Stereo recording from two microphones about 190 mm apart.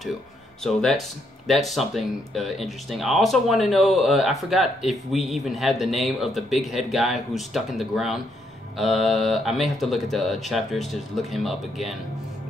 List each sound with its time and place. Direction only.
0.7 s speech: centre (ahead or behind)